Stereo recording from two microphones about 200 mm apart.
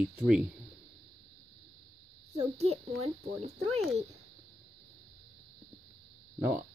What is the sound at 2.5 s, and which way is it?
Speech, 30° right (ahead or behind).